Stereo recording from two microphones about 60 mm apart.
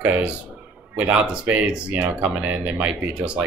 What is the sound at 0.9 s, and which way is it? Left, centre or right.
Speech, right.